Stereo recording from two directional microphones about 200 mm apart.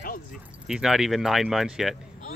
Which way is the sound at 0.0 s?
45° left (ahead or behind).